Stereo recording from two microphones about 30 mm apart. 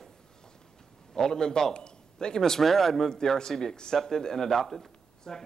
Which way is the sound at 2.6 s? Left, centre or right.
Centre.